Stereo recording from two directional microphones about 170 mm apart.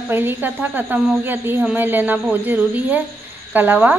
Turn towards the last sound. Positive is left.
turn(degrees=-10)  # may be behind; listen again after turning